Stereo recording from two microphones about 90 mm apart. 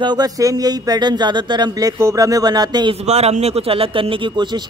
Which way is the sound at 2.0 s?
35° right (ahead or behind).